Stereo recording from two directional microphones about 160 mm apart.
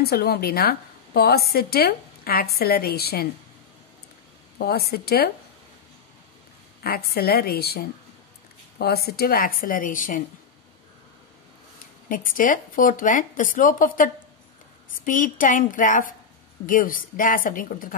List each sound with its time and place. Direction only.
0.0 s a woman's voice: 75° left (ahead or behind)
4.6 s a woman's voice: 75° left (ahead or behind)
6.8 s a woman's voice: 70° left (ahead or behind); by 10.2 s 55° left (ahead or behind)
12.1 s speech: 60° left (ahead or behind)